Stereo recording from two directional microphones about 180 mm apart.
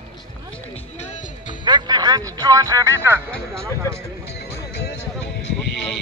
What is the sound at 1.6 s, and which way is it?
Speech, 25° right (ahead or behind).